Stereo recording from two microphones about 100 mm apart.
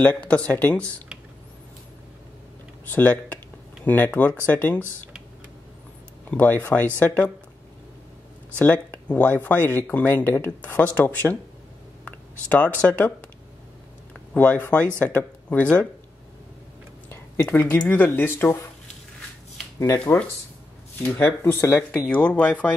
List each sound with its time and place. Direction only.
0.0 s speech: 15° left (ahead or behind)
2.9 s speech: 15° left (ahead or behind)
6.3 s speech: 15° left (ahead or behind)
8.5 s speech: 15° left (ahead or behind)
14.3 s speech: 15° left (ahead or behind)
17.1 s speech: 15° left (ahead or behind)
20.1 s speech: 30° left (ahead or behind)